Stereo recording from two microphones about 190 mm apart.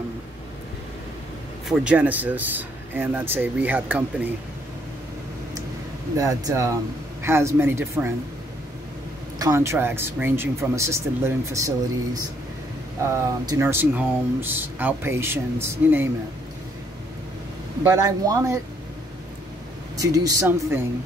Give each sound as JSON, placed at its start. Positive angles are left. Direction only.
{"t": 1.7, "sound": "speech", "side_deg": -5}
{"t": 6.1, "sound": "speech", "side_deg": -15}
{"t": 9.4, "sound": "speech", "side_deg": -15}
{"t": 17.8, "sound": "speech", "side_deg": -15}
{"t": 20.0, "sound": "speech", "side_deg": -20}